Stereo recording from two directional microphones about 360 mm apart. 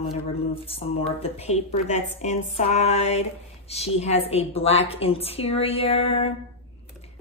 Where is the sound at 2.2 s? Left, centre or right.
Centre.